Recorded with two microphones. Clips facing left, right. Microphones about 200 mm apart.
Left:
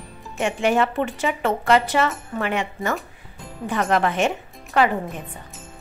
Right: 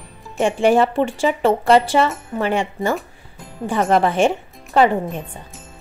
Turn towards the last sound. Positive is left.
turn(degrees=-30)  # may be behind; listen again after turning